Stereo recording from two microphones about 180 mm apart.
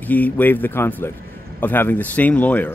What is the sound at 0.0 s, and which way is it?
Speech, 10° left (ahead or behind).